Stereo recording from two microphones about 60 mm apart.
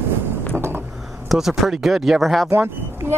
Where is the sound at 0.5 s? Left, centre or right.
Right.